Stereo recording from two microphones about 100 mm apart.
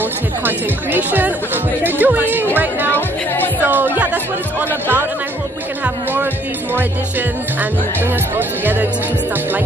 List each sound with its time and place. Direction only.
0.5 s speech: 20° right (ahead or behind)
3.6 s music: 20° right (ahead or behind)
8.4 s speech: 20° right (ahead or behind)